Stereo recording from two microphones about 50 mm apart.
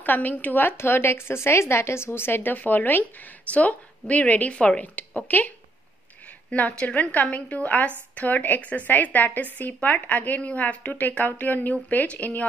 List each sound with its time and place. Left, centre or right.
0.0 s a woman's voice: left
6.7 s a woman's voice: left